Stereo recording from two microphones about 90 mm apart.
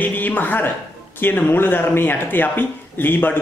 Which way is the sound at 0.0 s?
20° left (ahead or behind).